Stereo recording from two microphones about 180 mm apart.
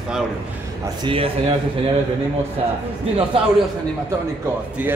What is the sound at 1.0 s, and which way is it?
Speech, 30° right (ahead or behind).